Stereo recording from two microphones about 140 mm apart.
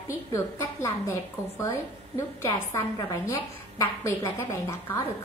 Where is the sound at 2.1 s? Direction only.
20° left (ahead or behind).